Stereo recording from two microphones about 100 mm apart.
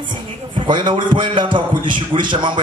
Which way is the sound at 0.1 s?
50° right (ahead or behind).